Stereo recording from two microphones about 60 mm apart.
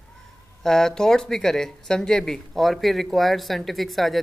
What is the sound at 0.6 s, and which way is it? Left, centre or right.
Speech, centre.